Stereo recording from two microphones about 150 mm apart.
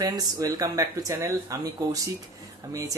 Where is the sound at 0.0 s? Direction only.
25° right (ahead or behind).